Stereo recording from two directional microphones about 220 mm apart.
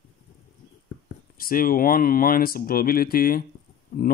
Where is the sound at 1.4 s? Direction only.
40° left (ahead or behind).